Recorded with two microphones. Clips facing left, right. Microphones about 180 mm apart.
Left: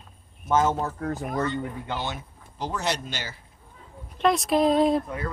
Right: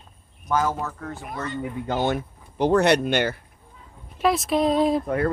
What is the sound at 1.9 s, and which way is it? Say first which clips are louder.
Speech: right 8 dB; 50° right (ahead or behind).